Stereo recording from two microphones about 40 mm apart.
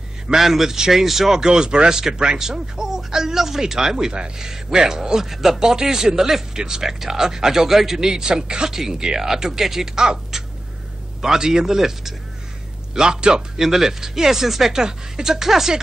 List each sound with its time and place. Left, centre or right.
0.3 s a man's voice: centre